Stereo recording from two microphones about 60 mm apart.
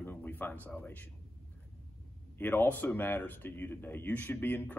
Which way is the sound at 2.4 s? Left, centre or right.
Left.